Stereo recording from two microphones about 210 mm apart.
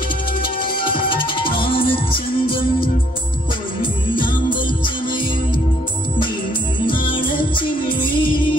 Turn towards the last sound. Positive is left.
turn(degrees=25)  # may be behind; listen again after turning